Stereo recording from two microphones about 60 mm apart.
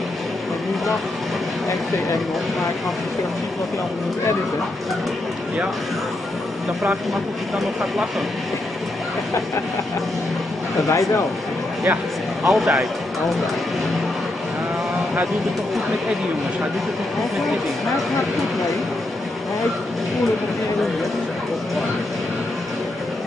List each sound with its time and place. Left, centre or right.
7.5 s speech: centre
10.9 s speech: left
12.4 s speech: centre